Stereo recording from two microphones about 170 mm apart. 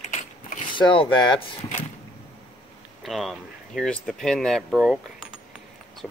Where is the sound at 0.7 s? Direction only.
30° left (ahead or behind).